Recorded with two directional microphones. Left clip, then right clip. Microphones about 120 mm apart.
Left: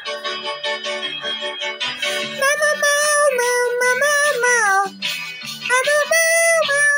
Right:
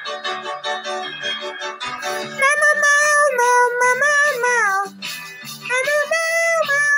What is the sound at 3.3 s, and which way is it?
Music, 35° right (ahead or behind).